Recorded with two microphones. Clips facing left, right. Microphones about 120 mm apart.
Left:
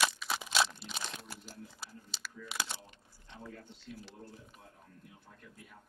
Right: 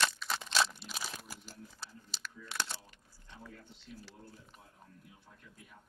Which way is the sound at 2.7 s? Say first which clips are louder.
Left 1 dB; 20° left (ahead or behind).